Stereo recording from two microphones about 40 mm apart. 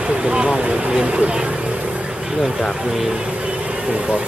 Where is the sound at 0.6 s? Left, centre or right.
Right.